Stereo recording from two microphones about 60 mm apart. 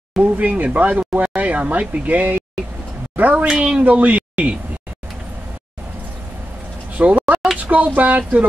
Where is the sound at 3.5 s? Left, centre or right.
Centre.